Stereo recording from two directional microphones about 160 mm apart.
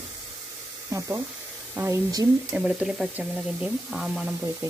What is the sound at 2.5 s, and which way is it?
Speech, centre (ahead or behind).